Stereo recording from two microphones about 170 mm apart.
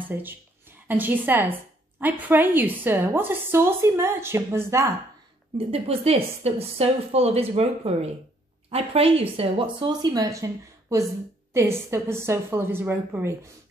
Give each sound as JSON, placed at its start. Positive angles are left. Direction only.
{"t": 0.1, "sound": "a woman's voice", "side_deg": -10}
{"t": 5.7, "sound": "a woman's voice", "side_deg": -35}